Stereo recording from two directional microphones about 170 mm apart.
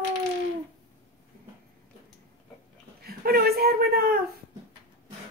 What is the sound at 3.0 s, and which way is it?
Speech, 65° right (ahead or behind).